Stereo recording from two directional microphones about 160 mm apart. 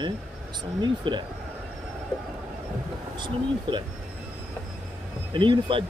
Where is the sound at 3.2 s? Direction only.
30° right (ahead or behind).